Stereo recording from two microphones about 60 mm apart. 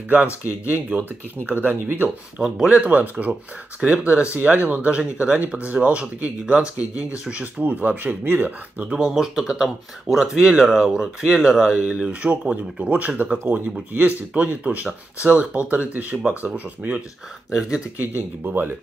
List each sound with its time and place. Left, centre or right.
0.5 s speech: right
2.3 s speech: centre
8.9 s speech: centre; by 17.0 s right
17.5 s speech: centre
17.9 s speech: right